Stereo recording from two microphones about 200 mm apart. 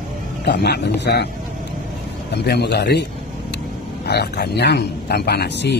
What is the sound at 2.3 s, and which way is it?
Speech, 55° left (ahead or behind).